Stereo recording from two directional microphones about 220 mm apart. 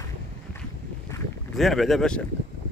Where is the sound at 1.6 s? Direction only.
Centre (ahead or behind).